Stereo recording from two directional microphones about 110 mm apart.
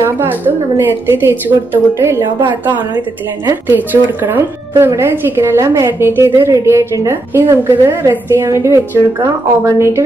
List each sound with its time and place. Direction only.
0.0 s speech: 20° right (ahead or behind)